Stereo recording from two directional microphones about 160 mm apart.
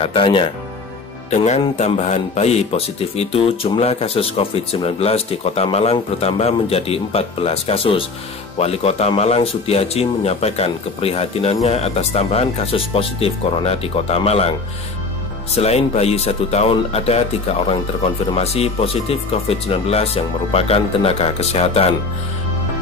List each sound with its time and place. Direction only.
0.0 s speech: 35° left (ahead or behind)
1.3 s speech: 45° left (ahead or behind)
15.5 s speech: 40° left (ahead or behind)